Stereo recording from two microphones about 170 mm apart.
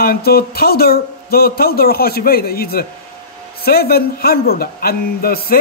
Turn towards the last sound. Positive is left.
turn(degrees=60)  # may be behind; listen again after turning